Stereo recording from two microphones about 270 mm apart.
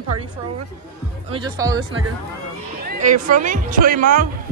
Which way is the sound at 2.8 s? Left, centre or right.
Right.